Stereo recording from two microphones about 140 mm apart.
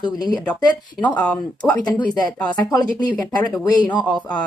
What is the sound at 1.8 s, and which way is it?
Speech, 30° left (ahead or behind).